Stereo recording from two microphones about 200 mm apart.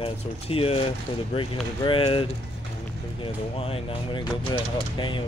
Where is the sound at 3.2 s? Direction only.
30° left (ahead or behind).